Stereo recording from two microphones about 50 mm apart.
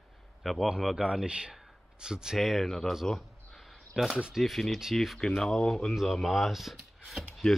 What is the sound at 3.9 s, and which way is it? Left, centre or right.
Speech, centre.